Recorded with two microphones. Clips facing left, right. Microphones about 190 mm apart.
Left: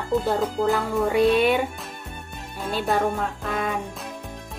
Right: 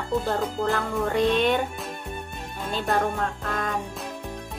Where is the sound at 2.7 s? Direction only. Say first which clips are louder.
Left 2 dB; 5° left (ahead or behind).